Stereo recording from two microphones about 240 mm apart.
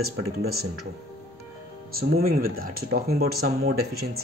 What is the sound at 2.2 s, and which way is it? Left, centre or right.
Speech, right.